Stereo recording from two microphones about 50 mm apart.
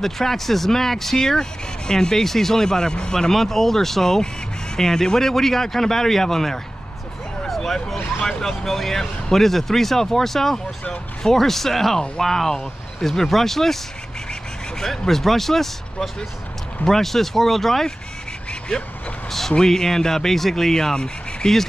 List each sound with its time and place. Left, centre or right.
0.0 s speech: centre
7.4 s a sound: centre
8.2 s speech: centre
10.8 s speech: centre
11.3 s speech: centre
14.8 s speech: centre
19.5 s speech: centre